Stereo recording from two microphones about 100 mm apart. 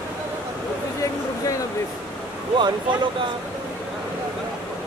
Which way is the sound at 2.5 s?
50° right (ahead or behind).